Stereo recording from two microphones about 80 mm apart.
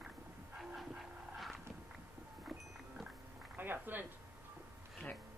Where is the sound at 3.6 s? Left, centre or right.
Right.